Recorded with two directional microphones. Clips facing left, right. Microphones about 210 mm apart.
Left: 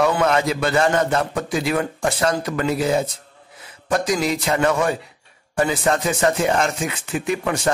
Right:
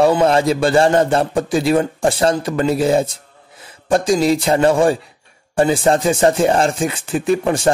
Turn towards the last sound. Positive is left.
turn(degrees=-30)  # may be behind; listen again after turning